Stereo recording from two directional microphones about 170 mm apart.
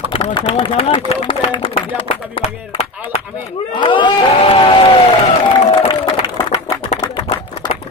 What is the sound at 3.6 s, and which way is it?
Speech, 30° left (ahead or behind).